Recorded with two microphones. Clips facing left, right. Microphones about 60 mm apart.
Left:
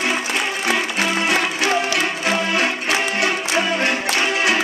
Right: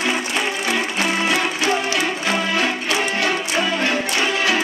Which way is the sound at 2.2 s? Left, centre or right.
Left.